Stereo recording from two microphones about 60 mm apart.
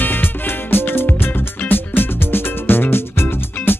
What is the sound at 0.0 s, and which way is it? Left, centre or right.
Music, left.